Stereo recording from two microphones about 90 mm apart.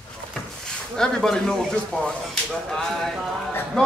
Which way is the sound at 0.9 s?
5° left (ahead or behind).